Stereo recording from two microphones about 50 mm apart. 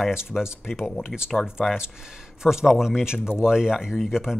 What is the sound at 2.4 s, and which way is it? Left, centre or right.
Speech, centre.